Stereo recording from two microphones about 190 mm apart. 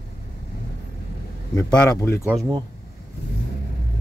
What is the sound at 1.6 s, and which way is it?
Speech, 15° left (ahead or behind).